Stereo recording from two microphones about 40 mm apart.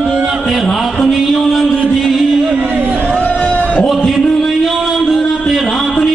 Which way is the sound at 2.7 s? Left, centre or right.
Right.